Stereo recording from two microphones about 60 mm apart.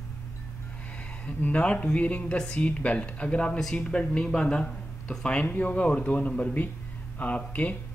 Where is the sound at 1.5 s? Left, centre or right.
Centre.